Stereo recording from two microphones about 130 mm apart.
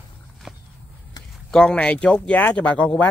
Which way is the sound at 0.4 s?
Centre (ahead or behind).